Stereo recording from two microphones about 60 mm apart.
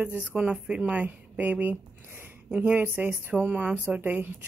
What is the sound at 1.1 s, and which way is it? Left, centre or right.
A woman's voice, right.